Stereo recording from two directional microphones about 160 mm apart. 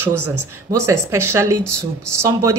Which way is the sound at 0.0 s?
15° right (ahead or behind).